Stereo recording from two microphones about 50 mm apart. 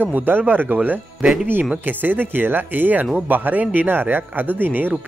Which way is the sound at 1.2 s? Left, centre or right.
Right.